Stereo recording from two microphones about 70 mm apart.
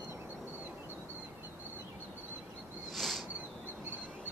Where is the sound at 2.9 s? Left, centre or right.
Centre.